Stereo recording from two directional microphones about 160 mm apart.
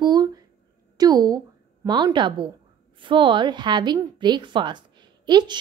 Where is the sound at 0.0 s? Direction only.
25° right (ahead or behind).